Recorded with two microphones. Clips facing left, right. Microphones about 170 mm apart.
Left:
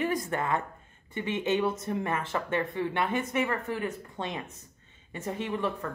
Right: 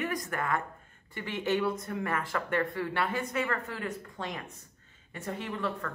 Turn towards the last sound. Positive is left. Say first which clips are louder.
# left 3 dB
turn(degrees=20)  # may be behind; listen again after turning